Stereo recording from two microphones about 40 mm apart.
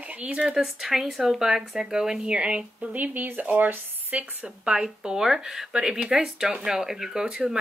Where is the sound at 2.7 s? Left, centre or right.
Right.